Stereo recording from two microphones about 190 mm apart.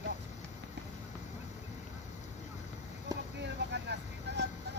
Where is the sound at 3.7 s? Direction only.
65° right (ahead or behind).